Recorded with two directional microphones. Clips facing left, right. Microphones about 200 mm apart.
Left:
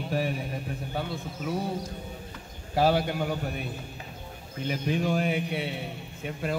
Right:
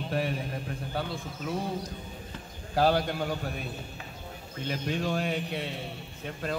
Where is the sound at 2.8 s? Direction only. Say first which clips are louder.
Left 1 dB; 5° left (ahead or behind).